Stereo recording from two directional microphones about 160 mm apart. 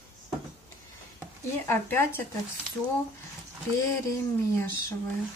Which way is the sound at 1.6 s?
15° left (ahead or behind).